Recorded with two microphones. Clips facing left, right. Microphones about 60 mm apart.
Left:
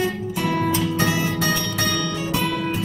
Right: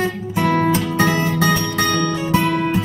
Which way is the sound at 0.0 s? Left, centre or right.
Right.